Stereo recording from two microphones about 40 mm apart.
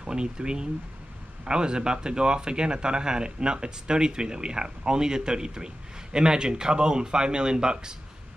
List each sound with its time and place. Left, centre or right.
0.0 s speech: right